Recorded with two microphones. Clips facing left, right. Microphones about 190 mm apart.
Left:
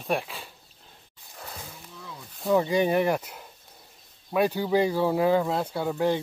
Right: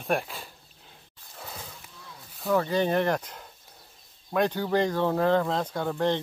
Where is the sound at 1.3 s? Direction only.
Centre (ahead or behind).